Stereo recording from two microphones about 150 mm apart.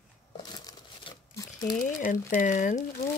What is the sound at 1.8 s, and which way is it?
Speech, 65° left (ahead or behind).